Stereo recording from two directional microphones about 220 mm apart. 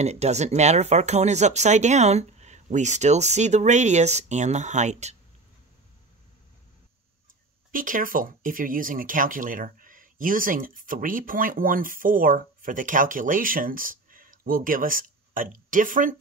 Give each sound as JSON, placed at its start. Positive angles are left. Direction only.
{"t": 0.0, "sound": "speech", "side_deg": -30}
{"t": 7.7, "sound": "speech", "side_deg": -40}